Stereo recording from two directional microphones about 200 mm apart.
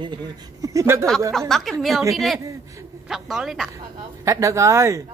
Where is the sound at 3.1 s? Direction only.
Centre (ahead or behind).